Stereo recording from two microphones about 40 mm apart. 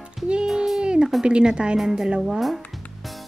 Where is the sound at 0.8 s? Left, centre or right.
Right.